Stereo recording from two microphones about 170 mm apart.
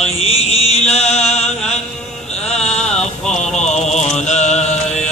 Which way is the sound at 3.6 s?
40° left (ahead or behind).